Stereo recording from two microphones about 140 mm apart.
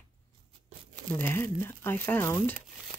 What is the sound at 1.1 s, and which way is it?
Speech, 15° left (ahead or behind).